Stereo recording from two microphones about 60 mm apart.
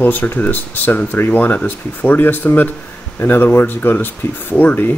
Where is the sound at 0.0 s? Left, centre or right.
Left.